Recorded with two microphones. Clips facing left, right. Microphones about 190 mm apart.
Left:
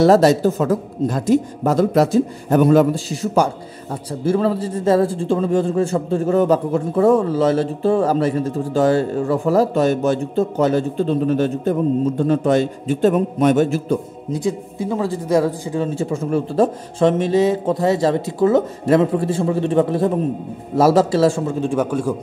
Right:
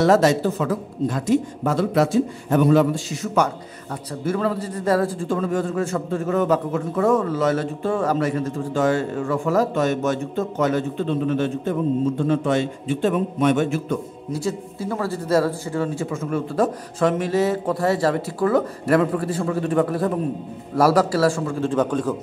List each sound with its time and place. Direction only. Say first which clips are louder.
0.0 s a man's voice: left 4 dB; 35° left (ahead or behind)
14.3 s a man's voice: left 4 dB; 15° left (ahead or behind)